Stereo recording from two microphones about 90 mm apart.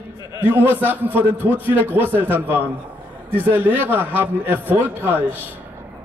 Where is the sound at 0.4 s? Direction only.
25° right (ahead or behind).